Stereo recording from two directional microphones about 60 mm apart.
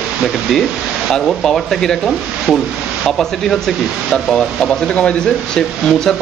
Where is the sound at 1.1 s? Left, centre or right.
Centre.